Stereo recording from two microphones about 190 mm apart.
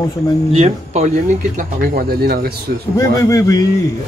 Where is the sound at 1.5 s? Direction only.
50° right (ahead or behind).